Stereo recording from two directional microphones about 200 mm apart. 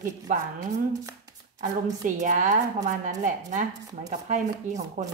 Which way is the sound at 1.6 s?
40° right (ahead or behind).